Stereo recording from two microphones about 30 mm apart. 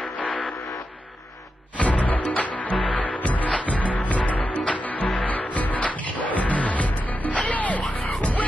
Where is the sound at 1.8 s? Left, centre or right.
Left.